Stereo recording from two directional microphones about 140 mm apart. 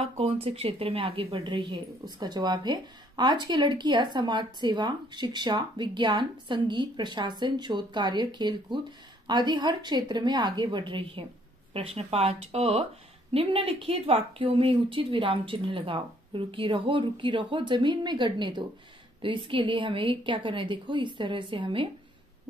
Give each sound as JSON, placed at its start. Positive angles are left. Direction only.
{"t": 0.0, "sound": "speech", "side_deg": -45}